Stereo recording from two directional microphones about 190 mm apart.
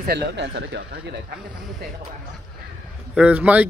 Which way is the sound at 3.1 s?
5° right (ahead or behind).